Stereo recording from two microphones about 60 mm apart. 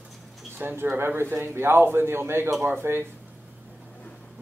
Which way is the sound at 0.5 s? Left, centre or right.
Right.